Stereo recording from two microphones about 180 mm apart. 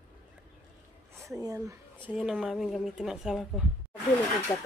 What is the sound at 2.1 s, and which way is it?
Speech, 5° right (ahead or behind).